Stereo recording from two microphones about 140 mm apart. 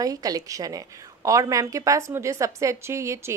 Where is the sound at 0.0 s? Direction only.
25° right (ahead or behind).